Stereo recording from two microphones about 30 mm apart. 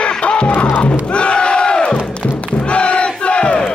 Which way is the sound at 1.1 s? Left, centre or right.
Left.